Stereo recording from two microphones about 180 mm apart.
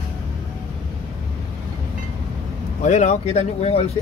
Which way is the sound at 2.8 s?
40° left (ahead or behind).